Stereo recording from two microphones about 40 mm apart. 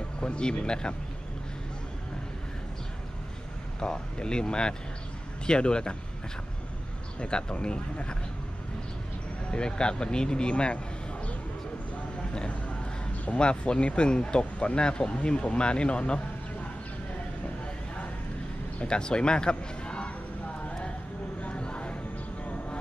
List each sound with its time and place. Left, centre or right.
0.2 s speech: left
3.8 s speech: left
7.2 s speech: left
9.5 s speech: left
11.9 s a sound: left
13.4 s speech: left
18.8 s speech: left
21.4 s a sound: left